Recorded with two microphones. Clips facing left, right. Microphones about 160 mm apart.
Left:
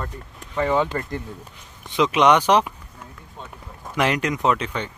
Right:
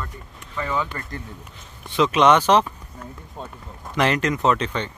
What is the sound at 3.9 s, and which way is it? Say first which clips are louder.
Speech: right 1 dB; 10° left (ahead or behind).